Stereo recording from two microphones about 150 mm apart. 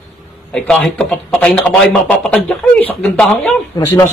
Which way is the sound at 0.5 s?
5° left (ahead or behind).